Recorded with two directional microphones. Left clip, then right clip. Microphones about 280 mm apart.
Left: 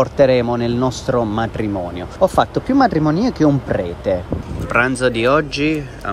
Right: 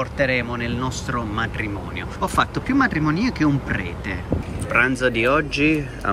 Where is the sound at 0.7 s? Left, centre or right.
Centre.